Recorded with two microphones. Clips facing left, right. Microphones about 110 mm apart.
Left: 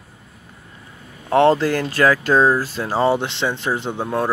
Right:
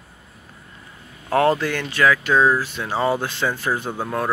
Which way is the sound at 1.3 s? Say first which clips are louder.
Left 4 dB; 30° left (ahead or behind).